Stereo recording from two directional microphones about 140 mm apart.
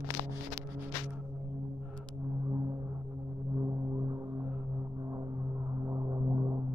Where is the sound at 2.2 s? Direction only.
25° right (ahead or behind).